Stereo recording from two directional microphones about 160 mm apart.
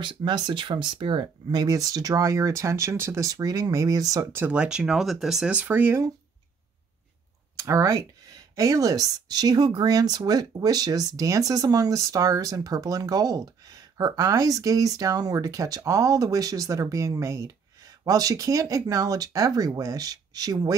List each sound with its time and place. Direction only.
0.0 s speech: 30° right (ahead or behind)
7.5 s speech: 20° right (ahead or behind)